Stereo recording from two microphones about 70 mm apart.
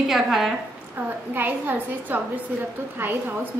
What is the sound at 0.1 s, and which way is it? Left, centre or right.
Speech, centre.